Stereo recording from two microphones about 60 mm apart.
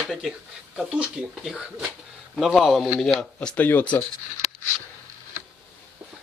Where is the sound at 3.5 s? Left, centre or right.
Left.